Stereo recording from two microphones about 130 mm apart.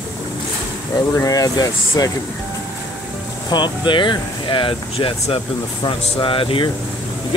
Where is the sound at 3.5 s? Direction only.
35° left (ahead or behind).